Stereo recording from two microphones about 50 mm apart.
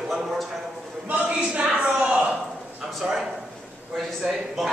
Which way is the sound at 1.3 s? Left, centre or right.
Centre.